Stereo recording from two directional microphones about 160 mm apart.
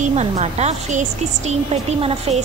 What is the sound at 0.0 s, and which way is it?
A woman's voice, 45° right (ahead or behind).